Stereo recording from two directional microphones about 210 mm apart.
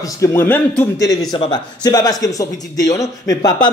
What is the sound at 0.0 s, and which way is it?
A man's voice, 15° left (ahead or behind).